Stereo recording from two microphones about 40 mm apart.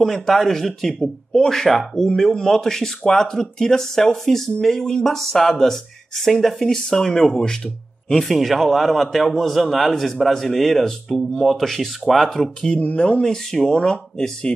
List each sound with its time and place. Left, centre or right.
0.0 s speech: centre
8.2 s a man's voice: centre
12.3 s speech: centre
12.9 s speech: left
13.3 s speech: centre